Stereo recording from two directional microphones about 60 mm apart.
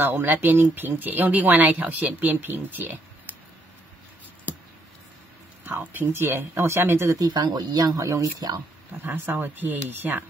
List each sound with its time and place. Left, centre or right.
0.0 s speech: right
5.7 s speech: right
6.2 s speech: right
7.2 s speech: right
8.9 s speech: right